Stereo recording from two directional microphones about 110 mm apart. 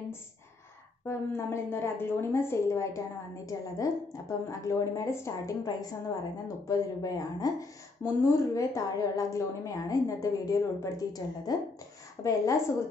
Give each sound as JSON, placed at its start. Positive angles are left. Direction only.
{"t": 1.0, "sound": "a woman's voice", "side_deg": 25}